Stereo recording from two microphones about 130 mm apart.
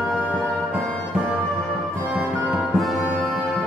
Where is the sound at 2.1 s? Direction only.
5° right (ahead or behind).